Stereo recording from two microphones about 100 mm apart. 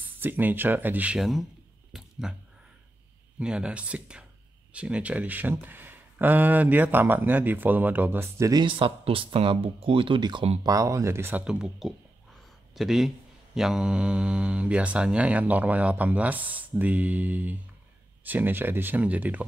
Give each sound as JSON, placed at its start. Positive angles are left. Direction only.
{"t": 0.2, "sound": "speech", "side_deg": -20}
{"t": 1.2, "sound": "a sound", "side_deg": 0}
{"t": 3.3, "sound": "speech", "side_deg": -10}
{"t": 8.5, "sound": "speech", "side_deg": -50}
{"t": 10.6, "sound": "speech", "side_deg": -35}
{"t": 11.4, "sound": "speech", "side_deg": -5}